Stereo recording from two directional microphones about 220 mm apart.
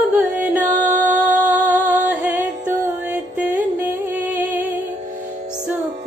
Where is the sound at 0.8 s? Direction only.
35° right (ahead or behind).